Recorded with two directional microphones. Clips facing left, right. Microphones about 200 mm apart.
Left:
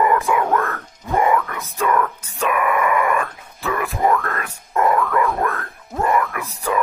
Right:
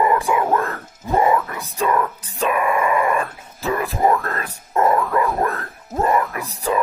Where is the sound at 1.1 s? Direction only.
25° right (ahead or behind).